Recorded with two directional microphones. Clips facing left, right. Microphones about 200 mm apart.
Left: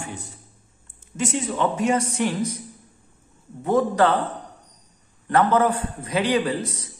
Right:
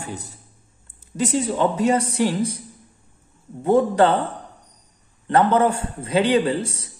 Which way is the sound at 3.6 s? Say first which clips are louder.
Right 3 dB; 30° right (ahead or behind).